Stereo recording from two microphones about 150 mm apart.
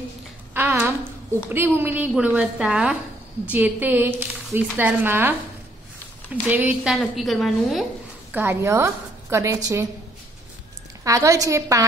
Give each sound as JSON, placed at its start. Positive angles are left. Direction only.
{"t": 0.6, "sound": "a woman's voice", "side_deg": -15}
{"t": 6.4, "sound": "a woman's voice", "side_deg": -10}
{"t": 8.3, "sound": "a woman's voice", "side_deg": -15}
{"t": 11.1, "sound": "a woman's voice", "side_deg": -20}